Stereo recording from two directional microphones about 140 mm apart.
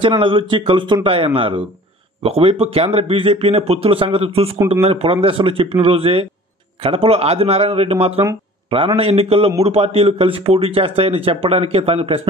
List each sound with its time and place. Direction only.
0.0 s speech: 35° right (ahead or behind)